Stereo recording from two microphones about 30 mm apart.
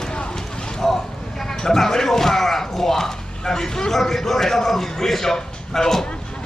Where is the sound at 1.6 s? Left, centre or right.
Centre.